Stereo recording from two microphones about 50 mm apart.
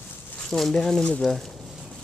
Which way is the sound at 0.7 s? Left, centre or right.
Centre.